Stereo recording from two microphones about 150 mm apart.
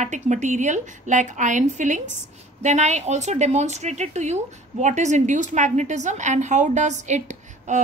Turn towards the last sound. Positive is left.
turn(degrees=-55)  # may be behind; listen again after turning